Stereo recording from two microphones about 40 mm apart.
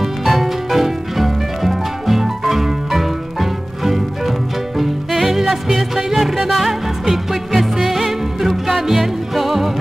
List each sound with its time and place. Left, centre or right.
0.0 s music: centre